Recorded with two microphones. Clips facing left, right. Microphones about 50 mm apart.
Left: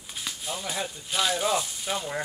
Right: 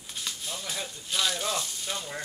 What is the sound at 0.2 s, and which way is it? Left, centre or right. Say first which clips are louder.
Speech: left 3 dB; centre.